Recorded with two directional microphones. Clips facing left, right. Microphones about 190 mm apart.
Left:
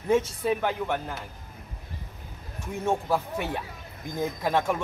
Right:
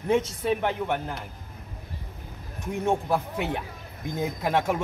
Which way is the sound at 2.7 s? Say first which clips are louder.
Right 1 dB; 15° right (ahead or behind).